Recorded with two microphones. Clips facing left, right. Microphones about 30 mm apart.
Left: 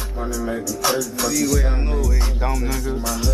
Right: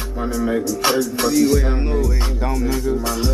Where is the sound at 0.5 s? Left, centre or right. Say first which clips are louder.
Right 3 dB; right.